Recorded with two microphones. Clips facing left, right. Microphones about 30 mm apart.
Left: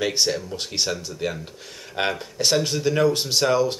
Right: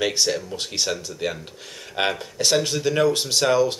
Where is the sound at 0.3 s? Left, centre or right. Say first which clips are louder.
Right 1 dB; centre.